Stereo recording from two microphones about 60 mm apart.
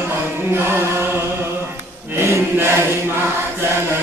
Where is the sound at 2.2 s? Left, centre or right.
Right.